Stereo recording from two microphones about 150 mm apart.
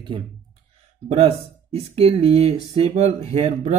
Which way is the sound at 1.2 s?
40° right (ahead or behind).